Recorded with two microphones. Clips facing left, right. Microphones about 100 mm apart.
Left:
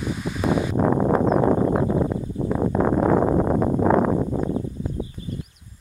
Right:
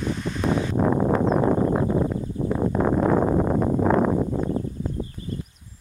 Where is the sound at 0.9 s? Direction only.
25° left (ahead or behind).